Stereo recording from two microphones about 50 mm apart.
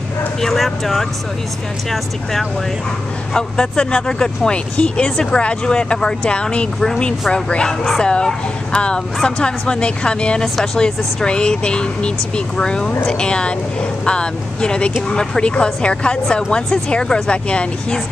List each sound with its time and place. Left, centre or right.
0.4 s speech: centre
3.3 s speech: centre